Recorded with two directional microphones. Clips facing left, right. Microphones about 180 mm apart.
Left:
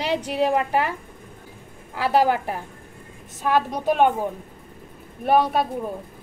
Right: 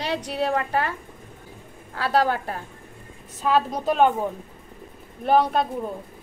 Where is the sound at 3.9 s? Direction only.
5° left (ahead or behind).